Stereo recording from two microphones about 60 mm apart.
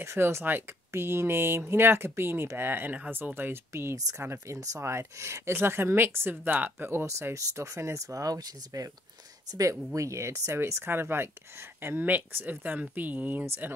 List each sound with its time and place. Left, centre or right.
0.0 s speech: right
3.7 s speech: right
4.2 s speech: right
6.3 s speech: right
6.9 s speech: right
9.5 s speech: right
10.6 s speech: right